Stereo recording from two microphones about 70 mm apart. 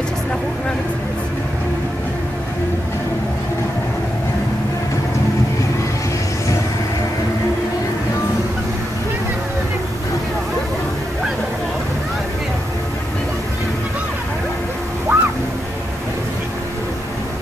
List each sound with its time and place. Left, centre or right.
15.1 s music: right